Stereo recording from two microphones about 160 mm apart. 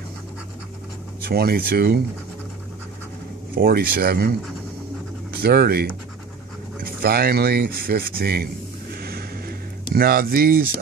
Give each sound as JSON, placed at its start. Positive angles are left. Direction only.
{"t": 1.2, "sound": "speech", "side_deg": -75}
{"t": 3.5, "sound": "speech", "side_deg": -70}
{"t": 5.4, "sound": "speech", "side_deg": -75}
{"t": 8.9, "sound": "a sound", "side_deg": -70}